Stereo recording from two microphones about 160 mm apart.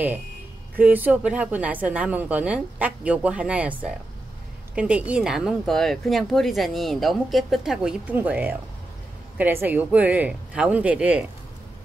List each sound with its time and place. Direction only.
0.7 s speech: 10° right (ahead or behind)